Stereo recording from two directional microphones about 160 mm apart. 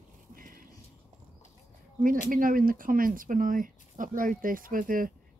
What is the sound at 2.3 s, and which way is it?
Speech, 60° right (ahead or behind).